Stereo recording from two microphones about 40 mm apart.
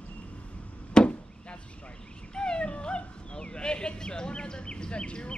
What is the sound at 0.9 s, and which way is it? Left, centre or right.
Chop, left.